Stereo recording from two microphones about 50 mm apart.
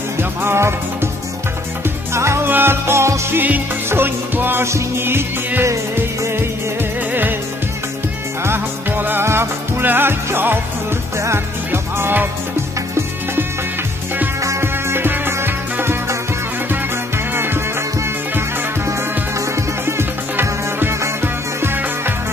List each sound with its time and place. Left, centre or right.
0.2 s music: right
2.1 s music: right
2.4 s music: right
3.3 s music: right
3.9 s music: right
4.6 s music: right
7.1 s music: right
8.5 s music: right
9.2 s music: right
11.1 s music: right
14.4 s music: right
17.3 s music: right
18.9 s music: right